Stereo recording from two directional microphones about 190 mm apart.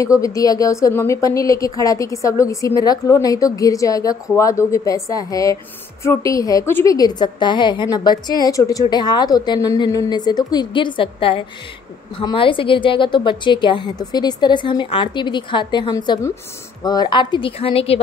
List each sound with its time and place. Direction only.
0.0 s a woman's voice: 15° left (ahead or behind)